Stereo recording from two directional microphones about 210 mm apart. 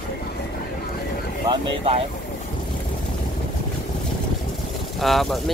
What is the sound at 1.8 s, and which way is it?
Speech, 25° right (ahead or behind).